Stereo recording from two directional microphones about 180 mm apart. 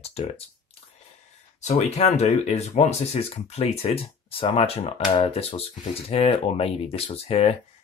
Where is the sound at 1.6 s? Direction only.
40° left (ahead or behind).